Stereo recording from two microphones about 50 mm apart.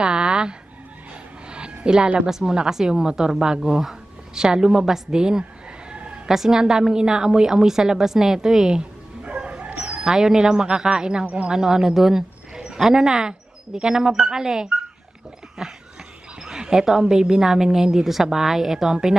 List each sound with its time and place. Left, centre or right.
0.0 s fowl: centre
1.5 s a sound: right
2.2 s a woman's voice: centre
5.9 s a sound: right
6.2 s a woman's voice: centre
9.2 s bow-wow: centre
9.8 s speech: centre
11.2 s speech: right
11.5 s a woman's voice: centre